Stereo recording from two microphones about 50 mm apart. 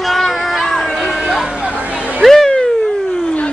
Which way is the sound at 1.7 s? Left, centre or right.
Right.